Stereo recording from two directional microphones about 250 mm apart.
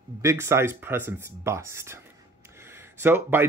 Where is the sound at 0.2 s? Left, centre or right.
Centre.